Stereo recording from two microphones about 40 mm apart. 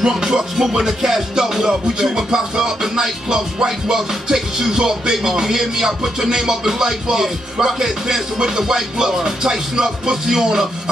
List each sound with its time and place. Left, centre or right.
0.1 s music: centre